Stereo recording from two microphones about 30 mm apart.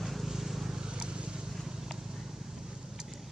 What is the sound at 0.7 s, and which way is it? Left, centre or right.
Vehicle, right.